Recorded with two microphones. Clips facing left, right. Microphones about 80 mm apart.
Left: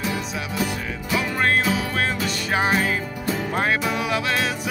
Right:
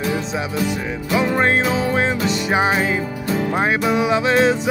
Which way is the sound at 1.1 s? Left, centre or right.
Right.